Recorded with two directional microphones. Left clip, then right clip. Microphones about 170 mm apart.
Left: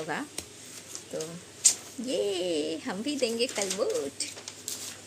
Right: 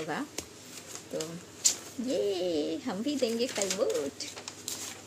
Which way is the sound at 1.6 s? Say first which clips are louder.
Left 3 dB; 5° left (ahead or behind).